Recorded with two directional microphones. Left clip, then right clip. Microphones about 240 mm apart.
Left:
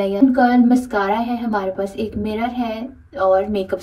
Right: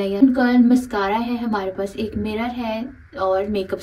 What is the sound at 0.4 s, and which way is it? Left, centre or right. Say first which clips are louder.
Speech: left 2 dB; centre.